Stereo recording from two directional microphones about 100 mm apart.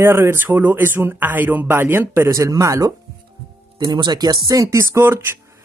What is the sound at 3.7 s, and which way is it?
Speech, 45° right (ahead or behind).